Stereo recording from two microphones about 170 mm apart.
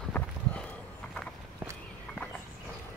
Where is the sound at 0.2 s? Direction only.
10° left (ahead or behind).